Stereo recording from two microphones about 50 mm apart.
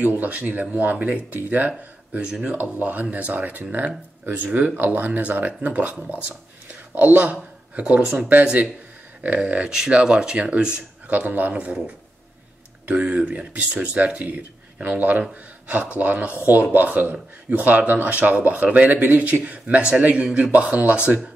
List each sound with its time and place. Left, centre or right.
0.0 s speech: right
4.7 s speech: right
8.0 s speech: centre
9.2 s speech: right
9.6 s speech: centre
10.4 s speech: right
11.5 s speech: right
12.8 s speech: right